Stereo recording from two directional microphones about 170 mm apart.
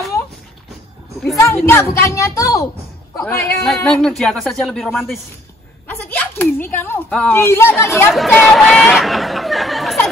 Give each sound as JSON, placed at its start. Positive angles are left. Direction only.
{"t": 1.4, "sound": "a woman's voice", "side_deg": 15}
{"t": 3.6, "sound": "speech", "side_deg": 5}
{"t": 5.9, "sound": "a woman's voice", "side_deg": 10}
{"t": 8.3, "sound": "speech", "side_deg": 0}